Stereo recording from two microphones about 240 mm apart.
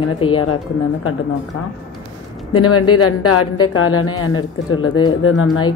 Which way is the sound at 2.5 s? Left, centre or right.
Left.